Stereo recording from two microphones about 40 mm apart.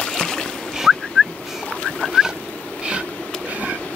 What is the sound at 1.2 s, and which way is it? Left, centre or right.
Fowl, centre.